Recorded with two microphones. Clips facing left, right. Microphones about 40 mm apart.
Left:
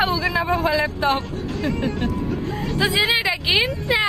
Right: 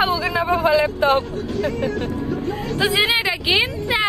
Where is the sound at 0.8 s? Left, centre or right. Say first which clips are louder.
Right 4 dB; centre.